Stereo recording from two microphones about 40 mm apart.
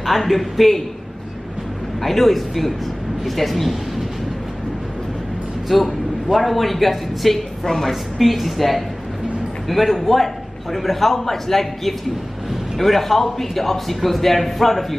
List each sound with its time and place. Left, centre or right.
0.0 s a man's voice: centre
2.0 s a man's voice: centre
5.7 s a man's voice: centre
7.9 s a man's voice: centre